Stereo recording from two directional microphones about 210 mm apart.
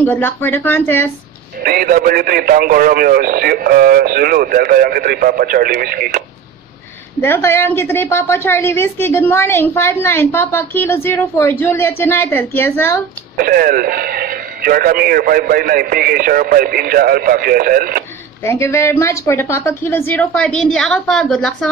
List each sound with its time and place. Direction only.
0.0 s a woman's voice: 10° left (ahead or behind)
1.6 s speech: 45° right (ahead or behind)
7.2 s a woman's voice: 10° left (ahead or behind)
13.4 s speech: 45° right (ahead or behind)
18.4 s a woman's voice: 15° left (ahead or behind)